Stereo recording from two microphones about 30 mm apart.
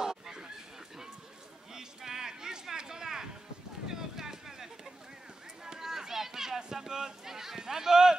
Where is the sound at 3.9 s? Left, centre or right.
Centre.